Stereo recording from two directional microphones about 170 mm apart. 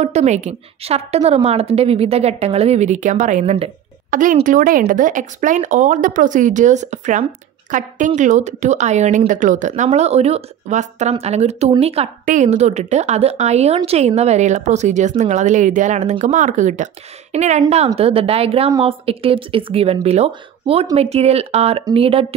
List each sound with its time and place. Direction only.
0.0 s a woman's voice: 40° right (ahead or behind)
4.1 s a woman's voice: 50° right (ahead or behind); by 22.2 s 35° right (ahead or behind)